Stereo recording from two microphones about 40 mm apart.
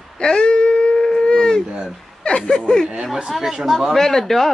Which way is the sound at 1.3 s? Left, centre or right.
Centre.